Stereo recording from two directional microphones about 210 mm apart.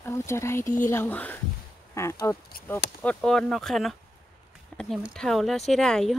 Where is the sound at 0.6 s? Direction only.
40° left (ahead or behind).